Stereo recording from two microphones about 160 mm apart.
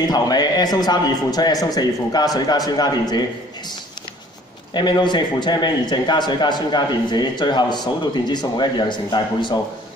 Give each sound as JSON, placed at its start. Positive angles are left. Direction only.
{"t": 0.1, "sound": "a man's voice", "side_deg": 25}
{"t": 4.7, "sound": "a man's voice", "side_deg": 25}